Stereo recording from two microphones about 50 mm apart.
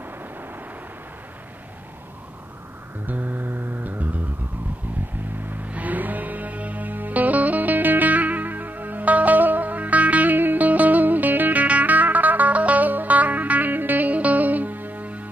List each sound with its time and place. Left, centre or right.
3.1 s music: right
5.4 s music: right